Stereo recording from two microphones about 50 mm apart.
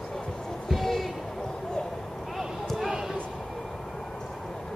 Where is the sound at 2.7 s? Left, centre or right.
Centre.